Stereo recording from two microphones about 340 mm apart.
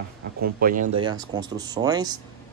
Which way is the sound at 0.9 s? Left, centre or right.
Centre.